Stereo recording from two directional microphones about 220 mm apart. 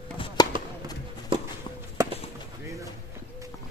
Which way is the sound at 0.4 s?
20° left (ahead or behind).